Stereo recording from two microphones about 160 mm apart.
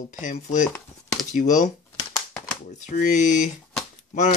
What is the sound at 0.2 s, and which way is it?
Speech, 50° left (ahead or behind).